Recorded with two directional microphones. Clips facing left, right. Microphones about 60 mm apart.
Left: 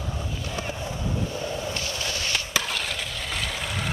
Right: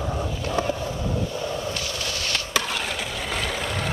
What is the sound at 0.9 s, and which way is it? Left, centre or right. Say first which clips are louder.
Vehicle: right 2 dB; right.